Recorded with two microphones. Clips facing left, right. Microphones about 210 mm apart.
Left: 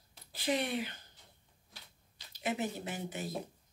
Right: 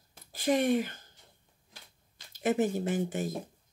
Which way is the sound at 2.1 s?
50° right (ahead or behind).